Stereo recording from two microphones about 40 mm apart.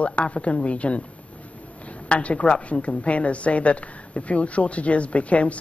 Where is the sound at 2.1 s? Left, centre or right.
Left.